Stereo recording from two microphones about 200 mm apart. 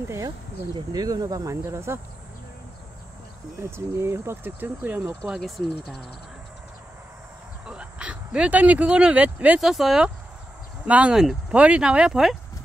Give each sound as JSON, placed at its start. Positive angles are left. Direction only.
{"t": 0.7, "sound": "speech", "side_deg": -20}
{"t": 3.7, "sound": "speech", "side_deg": -15}
{"t": 7.6, "sound": "speech", "side_deg": -5}